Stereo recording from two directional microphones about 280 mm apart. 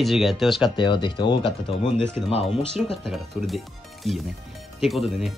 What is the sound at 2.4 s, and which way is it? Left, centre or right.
Speech, centre.